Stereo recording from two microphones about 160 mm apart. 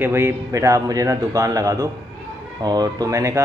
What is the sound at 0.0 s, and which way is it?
A man's voice, 15° right (ahead or behind).